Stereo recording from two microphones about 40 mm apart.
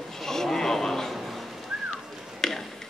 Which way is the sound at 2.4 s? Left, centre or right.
Centre.